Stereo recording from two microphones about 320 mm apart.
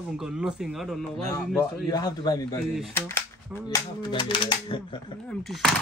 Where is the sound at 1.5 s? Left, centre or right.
Centre.